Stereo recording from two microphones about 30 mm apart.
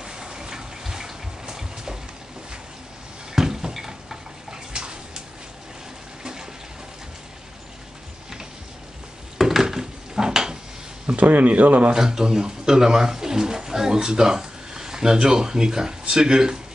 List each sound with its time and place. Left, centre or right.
0.0 s water: right
3.3 s a sound: centre
4.5 s bathtub: right
9.4 s a sound: centre
11.1 s speech: right
11.9 s speech: right